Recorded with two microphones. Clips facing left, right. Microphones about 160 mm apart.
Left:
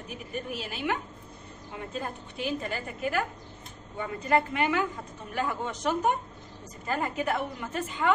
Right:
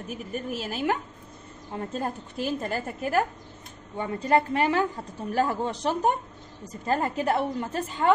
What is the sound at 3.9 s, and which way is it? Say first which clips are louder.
A woman's voice: right 3 dB; 30° right (ahead or behind).